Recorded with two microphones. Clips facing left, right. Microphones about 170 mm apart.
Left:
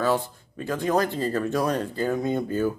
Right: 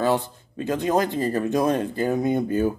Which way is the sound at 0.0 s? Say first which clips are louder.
Right 2 dB; 20° right (ahead or behind).